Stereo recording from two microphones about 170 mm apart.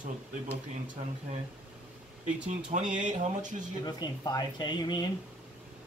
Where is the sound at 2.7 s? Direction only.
45° right (ahead or behind).